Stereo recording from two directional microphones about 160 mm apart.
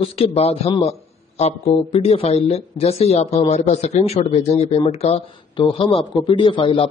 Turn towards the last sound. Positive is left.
turn(degrees=30)  # may be behind; listen again after turning